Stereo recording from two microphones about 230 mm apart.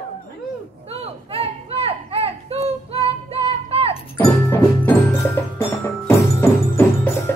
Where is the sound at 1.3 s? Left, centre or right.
Right.